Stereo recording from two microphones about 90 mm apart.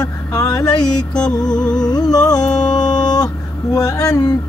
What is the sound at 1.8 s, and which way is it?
Humming, 45° left (ahead or behind).